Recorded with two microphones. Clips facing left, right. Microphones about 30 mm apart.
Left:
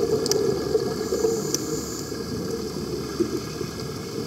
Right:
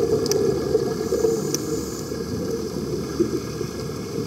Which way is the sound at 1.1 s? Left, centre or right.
Centre.